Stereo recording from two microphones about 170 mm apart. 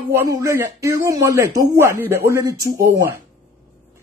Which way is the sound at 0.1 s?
15° right (ahead or behind).